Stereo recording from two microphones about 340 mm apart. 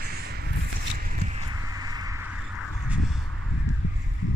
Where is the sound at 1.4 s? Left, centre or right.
Centre.